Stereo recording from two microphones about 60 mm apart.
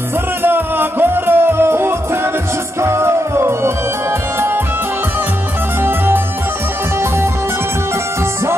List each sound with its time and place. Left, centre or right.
0.4 s music: right
5.8 s music: right